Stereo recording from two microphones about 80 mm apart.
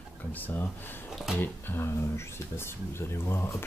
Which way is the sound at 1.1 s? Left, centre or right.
Centre.